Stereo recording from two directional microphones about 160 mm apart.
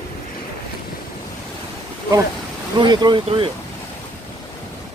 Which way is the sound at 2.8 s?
25° right (ahead or behind).